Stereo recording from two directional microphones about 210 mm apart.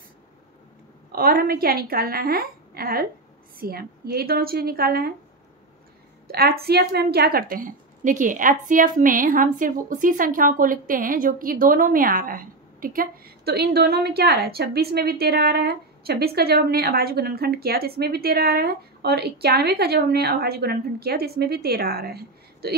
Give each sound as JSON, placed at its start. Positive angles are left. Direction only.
{"t": 1.1, "sound": "speech", "side_deg": -45}
{"t": 6.2, "sound": "speech", "side_deg": -45}